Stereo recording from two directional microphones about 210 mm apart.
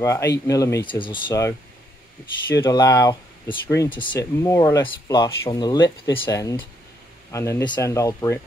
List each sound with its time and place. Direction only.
0.0 s speech: 15° left (ahead or behind)